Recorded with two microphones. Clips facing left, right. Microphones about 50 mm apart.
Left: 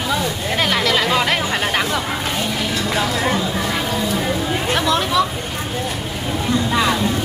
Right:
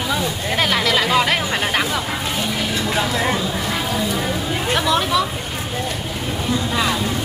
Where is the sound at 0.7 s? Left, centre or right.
Centre.